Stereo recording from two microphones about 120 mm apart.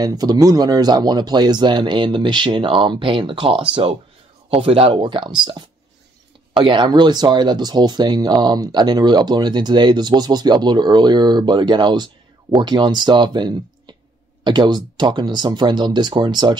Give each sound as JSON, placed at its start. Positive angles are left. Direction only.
{"t": 0.0, "sound": "speech", "side_deg": -35}
{"t": 6.6, "sound": "speech", "side_deg": -40}